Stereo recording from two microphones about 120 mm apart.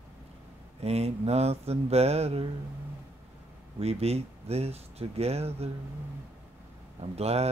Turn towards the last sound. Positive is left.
turn(degrees=-60)  # may be behind; listen again after turning